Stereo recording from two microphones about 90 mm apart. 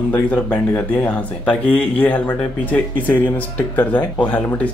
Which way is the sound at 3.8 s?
20° left (ahead or behind).